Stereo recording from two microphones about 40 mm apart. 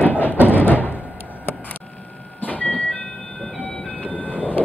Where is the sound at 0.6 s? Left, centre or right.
Left.